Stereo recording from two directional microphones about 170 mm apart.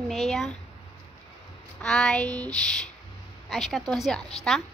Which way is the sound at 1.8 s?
5° left (ahead or behind).